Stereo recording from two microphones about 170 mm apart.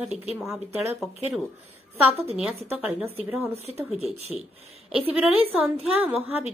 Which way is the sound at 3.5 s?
35° right (ahead or behind).